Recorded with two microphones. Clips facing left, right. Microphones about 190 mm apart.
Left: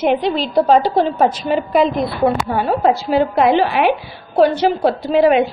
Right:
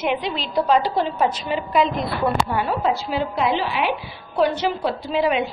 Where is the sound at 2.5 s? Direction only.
45° left (ahead or behind).